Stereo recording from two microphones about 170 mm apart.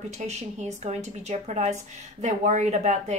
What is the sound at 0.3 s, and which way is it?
Speech, 40° right (ahead or behind).